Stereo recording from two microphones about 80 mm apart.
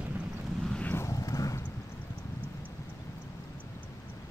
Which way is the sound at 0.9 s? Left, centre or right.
Left.